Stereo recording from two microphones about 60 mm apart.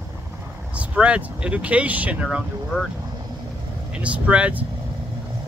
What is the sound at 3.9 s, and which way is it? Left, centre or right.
Speech, right.